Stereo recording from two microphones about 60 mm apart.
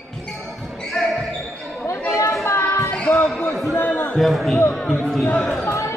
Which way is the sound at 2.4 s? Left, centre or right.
Left.